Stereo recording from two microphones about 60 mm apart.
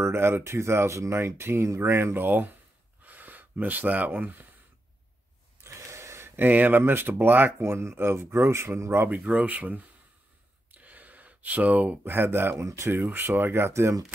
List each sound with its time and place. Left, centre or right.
0.0 s speech: right
3.0 s a sound: right
5.6 s a sound: right
6.8 s speech: right
9.1 s speech: right
12.9 s speech: right